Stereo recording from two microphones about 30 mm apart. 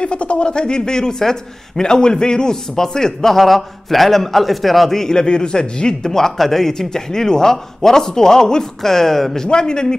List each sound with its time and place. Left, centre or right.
0.0 s a man's voice: left; by 3.3 s centre
3.3 s a man's voice: centre
5.0 s a man's voice: left
6.0 s a man's voice: centre
8.8 s speech: centre
9.5 s a man's voice: left